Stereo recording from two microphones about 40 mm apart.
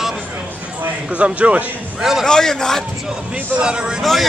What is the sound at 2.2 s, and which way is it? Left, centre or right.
Speech, centre.